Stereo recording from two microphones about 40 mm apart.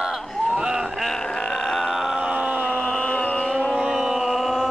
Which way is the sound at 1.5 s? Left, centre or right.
Centre.